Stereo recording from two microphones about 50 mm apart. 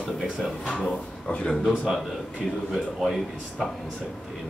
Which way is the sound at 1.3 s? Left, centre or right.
Left.